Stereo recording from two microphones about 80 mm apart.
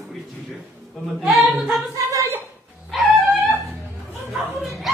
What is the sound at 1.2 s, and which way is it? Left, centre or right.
Singing, centre.